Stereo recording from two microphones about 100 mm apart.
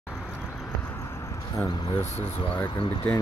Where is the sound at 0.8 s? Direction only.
25° left (ahead or behind).